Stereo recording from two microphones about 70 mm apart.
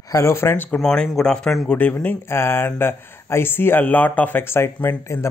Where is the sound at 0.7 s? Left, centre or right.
Centre.